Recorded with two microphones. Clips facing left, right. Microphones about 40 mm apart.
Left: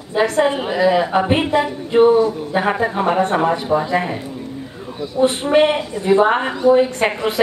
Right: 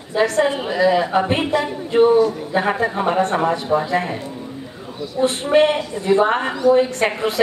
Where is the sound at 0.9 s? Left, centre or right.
Centre.